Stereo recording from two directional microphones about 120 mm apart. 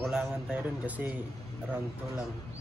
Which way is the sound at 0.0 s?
5° right (ahead or behind).